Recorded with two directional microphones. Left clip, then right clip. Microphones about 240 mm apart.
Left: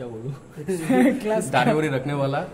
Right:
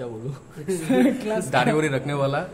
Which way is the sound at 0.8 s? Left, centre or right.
Left.